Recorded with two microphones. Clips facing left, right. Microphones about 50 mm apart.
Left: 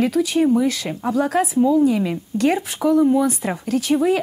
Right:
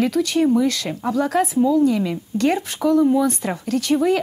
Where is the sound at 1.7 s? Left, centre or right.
Centre.